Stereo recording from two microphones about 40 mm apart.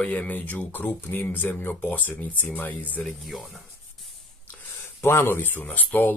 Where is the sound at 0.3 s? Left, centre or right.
Left.